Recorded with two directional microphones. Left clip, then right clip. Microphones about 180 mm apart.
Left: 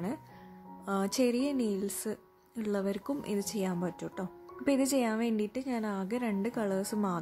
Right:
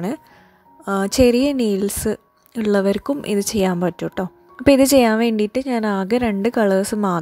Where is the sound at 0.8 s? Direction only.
40° right (ahead or behind).